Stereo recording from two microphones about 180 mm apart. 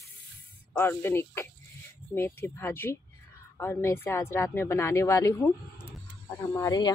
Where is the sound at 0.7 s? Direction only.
15° left (ahead or behind).